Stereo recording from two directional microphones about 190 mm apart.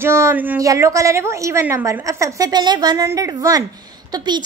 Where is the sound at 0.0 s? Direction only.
15° right (ahead or behind).